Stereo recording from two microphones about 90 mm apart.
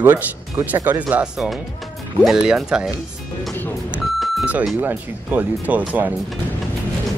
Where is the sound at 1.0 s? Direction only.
10° right (ahead or behind).